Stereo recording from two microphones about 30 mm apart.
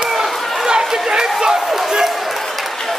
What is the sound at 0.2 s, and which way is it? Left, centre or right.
Run, right.